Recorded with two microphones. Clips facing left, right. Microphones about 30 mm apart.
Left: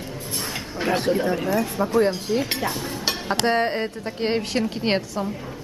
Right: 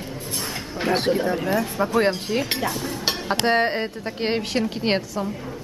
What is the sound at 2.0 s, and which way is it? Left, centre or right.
Speech, right.